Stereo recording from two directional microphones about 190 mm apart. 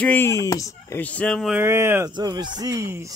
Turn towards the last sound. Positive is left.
turn(degrees=-15)  # may be behind; listen again after turning